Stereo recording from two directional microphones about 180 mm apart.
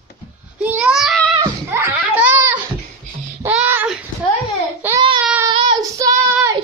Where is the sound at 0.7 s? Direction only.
5° right (ahead or behind).